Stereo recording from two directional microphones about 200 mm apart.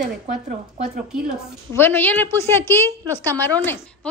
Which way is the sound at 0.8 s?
5° right (ahead or behind).